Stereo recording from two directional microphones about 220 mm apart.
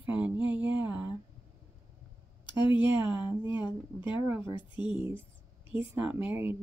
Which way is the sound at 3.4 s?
20° left (ahead or behind).